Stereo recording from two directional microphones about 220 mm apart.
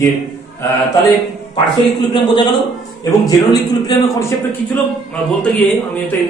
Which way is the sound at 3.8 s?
15° left (ahead or behind).